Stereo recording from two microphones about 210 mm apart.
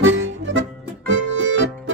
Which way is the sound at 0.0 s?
65° right (ahead or behind).